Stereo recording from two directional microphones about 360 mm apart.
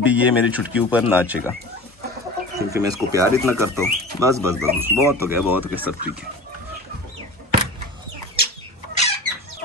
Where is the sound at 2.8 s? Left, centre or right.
Centre.